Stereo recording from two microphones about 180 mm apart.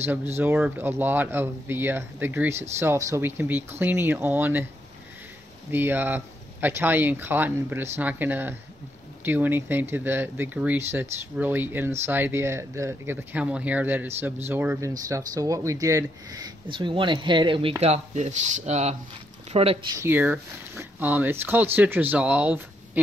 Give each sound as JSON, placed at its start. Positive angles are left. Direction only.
{"t": 0.4, "sound": "speech", "side_deg": -10}
{"t": 5.7, "sound": "speech", "side_deg": -10}
{"t": 20.0, "sound": "speech", "side_deg": -10}